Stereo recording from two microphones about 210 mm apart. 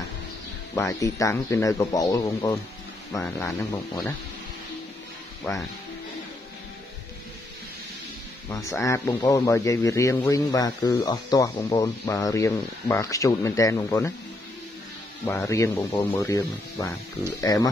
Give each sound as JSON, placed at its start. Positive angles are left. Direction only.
{"t": 0.7, "sound": "speech", "side_deg": 15}
{"t": 5.4, "sound": "speech", "side_deg": 15}
{"t": 8.5, "sound": "speech", "side_deg": 15}
{"t": 15.2, "sound": "speech", "side_deg": 15}